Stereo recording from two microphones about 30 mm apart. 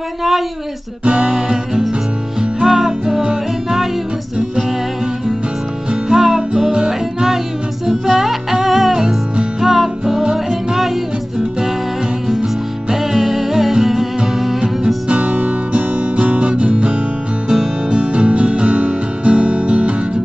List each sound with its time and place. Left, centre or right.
1.0 s music: right
1.7 s music: centre
6.1 s music: centre
8.1 s music: centre
12.9 s music: centre
15.0 s music: right
15.3 s music: right
17.5 s guitar: right